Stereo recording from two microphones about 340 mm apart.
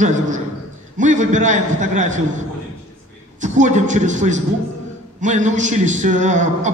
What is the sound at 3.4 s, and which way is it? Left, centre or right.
A man's voice, right.